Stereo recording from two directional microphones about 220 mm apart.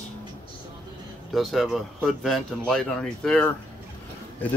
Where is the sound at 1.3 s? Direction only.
Centre (ahead or behind).